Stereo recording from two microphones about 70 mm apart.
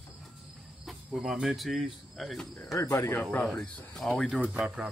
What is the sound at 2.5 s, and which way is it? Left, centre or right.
Speech, left.